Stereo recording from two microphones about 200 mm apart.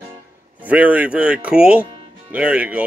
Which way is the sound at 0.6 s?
5° right (ahead or behind).